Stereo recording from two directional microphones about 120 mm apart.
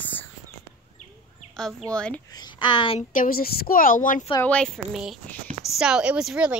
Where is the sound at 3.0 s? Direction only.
90° left.